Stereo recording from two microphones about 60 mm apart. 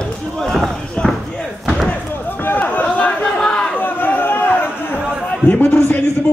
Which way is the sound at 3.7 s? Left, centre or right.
Left.